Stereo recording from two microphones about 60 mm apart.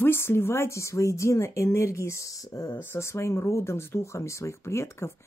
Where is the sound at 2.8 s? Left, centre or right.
Left.